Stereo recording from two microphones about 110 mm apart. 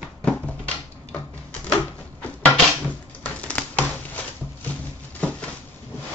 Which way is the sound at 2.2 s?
15° left (ahead or behind).